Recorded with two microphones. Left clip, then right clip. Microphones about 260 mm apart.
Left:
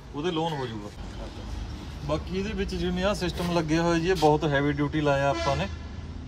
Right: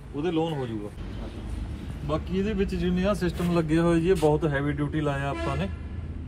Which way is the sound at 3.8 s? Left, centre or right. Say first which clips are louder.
Right 1 dB; left.